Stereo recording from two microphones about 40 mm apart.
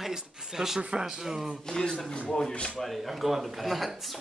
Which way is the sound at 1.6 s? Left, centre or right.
Centre.